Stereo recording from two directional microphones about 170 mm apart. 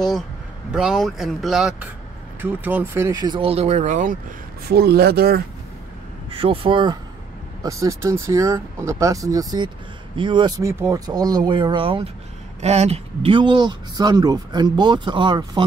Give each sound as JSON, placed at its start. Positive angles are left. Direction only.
{"t": 0.7, "sound": "speech", "side_deg": -5}
{"t": 4.6, "sound": "a man's voice", "side_deg": -65}
{"t": 6.3, "sound": "speech", "side_deg": -35}